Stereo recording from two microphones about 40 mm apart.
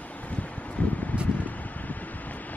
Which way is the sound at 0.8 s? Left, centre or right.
Left.